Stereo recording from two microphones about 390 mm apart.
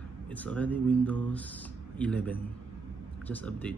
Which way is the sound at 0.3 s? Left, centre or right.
Centre.